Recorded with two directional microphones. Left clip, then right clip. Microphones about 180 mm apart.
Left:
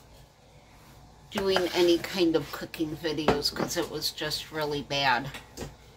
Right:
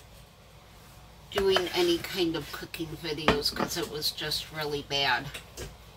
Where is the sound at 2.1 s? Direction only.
60° left (ahead or behind).